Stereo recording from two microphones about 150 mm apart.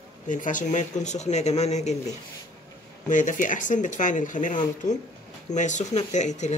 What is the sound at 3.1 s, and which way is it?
Speech, 60° left (ahead or behind).